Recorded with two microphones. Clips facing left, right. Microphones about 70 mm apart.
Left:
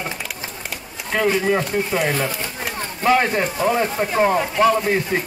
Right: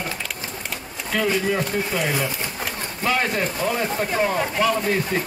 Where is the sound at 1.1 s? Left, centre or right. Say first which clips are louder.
Left 3 dB; left.